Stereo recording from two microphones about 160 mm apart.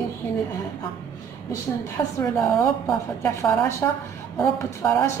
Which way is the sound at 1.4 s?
20° left (ahead or behind).